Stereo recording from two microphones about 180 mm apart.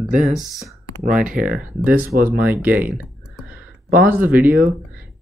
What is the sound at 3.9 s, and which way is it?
Speech, 10° right (ahead or behind).